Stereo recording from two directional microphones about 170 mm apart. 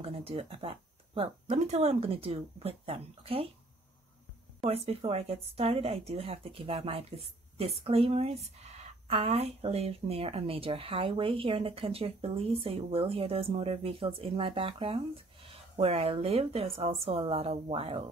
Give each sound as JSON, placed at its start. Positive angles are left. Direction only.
{"t": 0.0, "sound": "speech", "side_deg": -35}
{"t": 4.6, "sound": "speech", "side_deg": -35}